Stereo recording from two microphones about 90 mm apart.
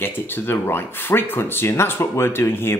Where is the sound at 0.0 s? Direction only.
25° left (ahead or behind).